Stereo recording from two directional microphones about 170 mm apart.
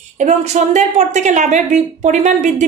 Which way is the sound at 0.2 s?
40° right (ahead or behind).